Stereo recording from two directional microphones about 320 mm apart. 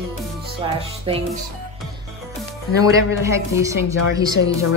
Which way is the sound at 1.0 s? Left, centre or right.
Centre.